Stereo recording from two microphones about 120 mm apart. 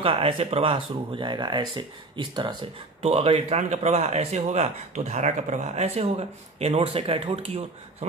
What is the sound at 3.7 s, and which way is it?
Speech, 65° right (ahead or behind).